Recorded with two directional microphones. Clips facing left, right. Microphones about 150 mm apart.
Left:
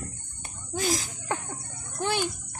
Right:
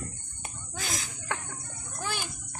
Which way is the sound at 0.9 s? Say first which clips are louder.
Left 6 dB; 35° left (ahead or behind).